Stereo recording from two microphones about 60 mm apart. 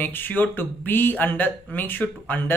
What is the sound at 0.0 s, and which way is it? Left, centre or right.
Speech, left.